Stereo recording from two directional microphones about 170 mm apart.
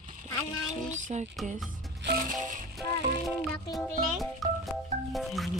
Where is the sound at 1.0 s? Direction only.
45° right (ahead or behind).